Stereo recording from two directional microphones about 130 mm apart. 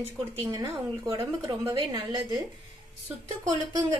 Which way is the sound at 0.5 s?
30° right (ahead or behind).